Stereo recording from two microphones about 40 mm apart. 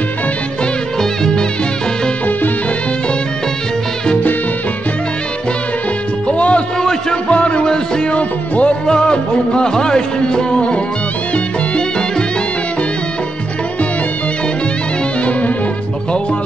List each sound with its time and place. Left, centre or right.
0.9 s music: centre
6.2 s music: left
6.8 s music: centre
7.2 s music: left
8.2 s music: left
8.8 s music: left